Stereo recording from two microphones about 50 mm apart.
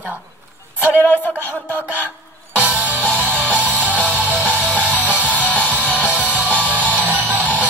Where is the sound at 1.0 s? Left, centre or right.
Left.